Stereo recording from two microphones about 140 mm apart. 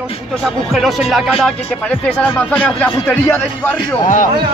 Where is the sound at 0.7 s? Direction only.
Centre (ahead or behind).